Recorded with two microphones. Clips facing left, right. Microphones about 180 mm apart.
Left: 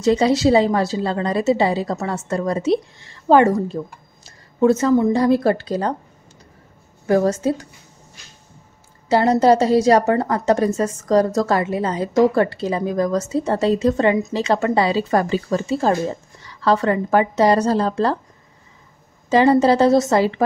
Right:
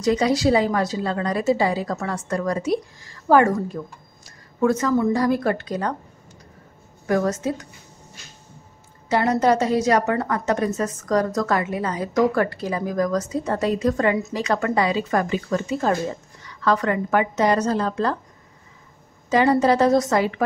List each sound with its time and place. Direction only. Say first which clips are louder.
0.0 s a woman's voice: left 3 dB; 25° left (ahead or behind)
7.1 s a woman's voice: left 4 dB; 30° left (ahead or behind)
9.1 s a woman's voice: left 4 dB; 30° left (ahead or behind)
19.2 s a woman's voice: left 3 dB; 30° left (ahead or behind)